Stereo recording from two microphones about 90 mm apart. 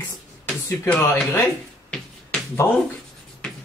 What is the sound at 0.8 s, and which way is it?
Speech, 20° left (ahead or behind).